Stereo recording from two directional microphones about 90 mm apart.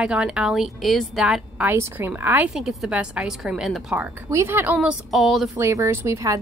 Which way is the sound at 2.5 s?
5° right (ahead or behind).